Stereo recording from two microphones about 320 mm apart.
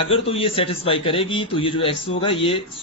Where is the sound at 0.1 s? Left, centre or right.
Centre.